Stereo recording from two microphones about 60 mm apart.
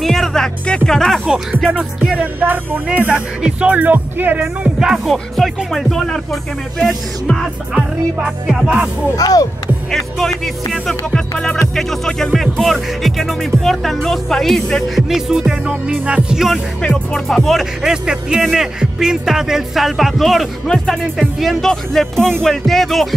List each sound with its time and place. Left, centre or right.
0.0 s speech: centre
0.8 s music: centre
1.7 s music: centre
2.1 s music: right
4.7 s speech: centre
7.7 s speech: centre
9.1 s speech: left
9.8 s speech: centre
11.7 s music: centre
12.4 s speech: centre
16.8 s music: centre
17.3 s speech: centre
20.6 s speech: centre